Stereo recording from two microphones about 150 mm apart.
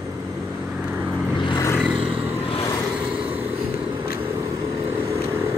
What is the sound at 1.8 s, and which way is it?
Vehicle, 5° right (ahead or behind).